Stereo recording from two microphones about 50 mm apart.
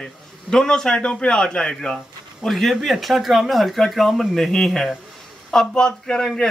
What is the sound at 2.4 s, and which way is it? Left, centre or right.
A man's voice, centre.